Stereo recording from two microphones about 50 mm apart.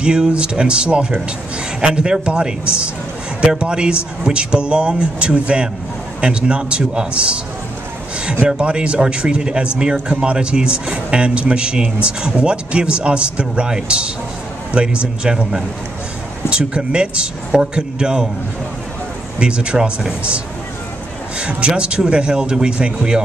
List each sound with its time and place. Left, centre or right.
0.0 s a man's voice: centre
8.5 s a man's voice: centre
19.3 s a man's voice: right
21.4 s a man's voice: right